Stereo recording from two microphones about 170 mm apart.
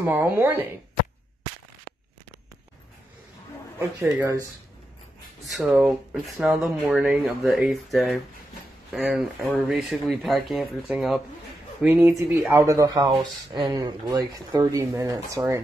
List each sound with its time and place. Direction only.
0.0 s speech: 10° right (ahead or behind)
4.0 s speech: 15° right (ahead or behind)
5.4 s speech: centre (ahead or behind); by 15.6 s 15° right (ahead or behind)